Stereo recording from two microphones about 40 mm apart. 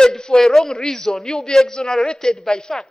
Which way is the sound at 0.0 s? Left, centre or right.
Centre.